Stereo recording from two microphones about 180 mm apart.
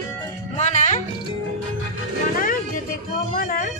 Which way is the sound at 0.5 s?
40° left (ahead or behind).